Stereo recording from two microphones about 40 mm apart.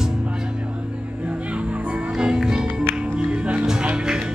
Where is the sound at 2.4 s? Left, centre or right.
Centre.